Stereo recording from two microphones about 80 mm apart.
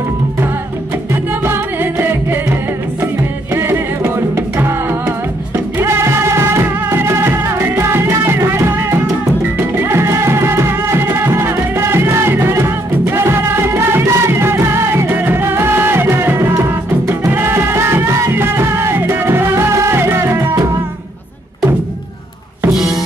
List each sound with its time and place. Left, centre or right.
1.4 s music: right
3.5 s music: right